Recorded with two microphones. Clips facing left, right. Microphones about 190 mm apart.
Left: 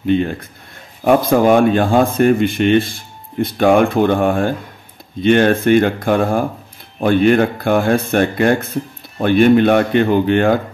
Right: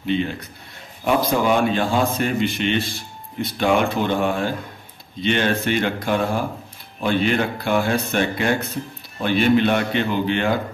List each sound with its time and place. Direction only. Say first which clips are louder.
0.0 s speech: left 6 dB; 50° left (ahead or behind)